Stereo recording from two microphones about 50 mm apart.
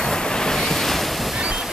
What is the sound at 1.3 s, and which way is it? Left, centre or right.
Waves, centre.